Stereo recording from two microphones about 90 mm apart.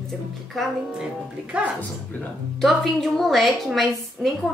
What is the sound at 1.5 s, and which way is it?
Speech, 15° right (ahead or behind).